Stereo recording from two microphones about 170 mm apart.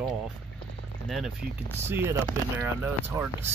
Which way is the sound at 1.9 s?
15° right (ahead or behind).